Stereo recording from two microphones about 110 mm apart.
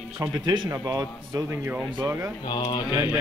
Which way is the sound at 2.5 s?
40° left (ahead or behind).